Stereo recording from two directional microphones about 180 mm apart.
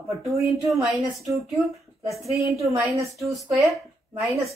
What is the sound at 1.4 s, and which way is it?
Speech, centre (ahead or behind).